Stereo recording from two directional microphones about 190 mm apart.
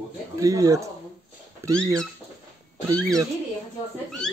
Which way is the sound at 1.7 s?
5° left (ahead or behind).